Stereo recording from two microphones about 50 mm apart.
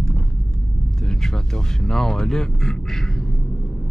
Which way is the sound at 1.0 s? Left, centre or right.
Centre.